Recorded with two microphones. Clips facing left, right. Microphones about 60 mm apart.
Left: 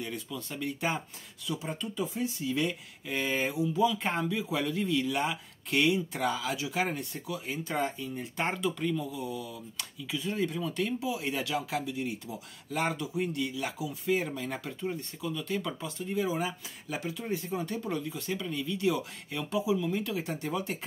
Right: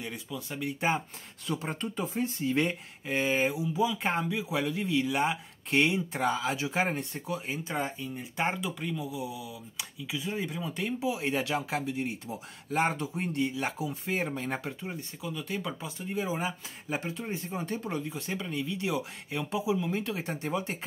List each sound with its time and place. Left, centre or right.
0.0 s speech: centre
1.5 s speech: right
3.1 s speech: right